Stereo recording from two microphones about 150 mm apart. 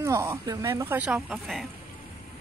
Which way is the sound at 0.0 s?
20° right (ahead or behind).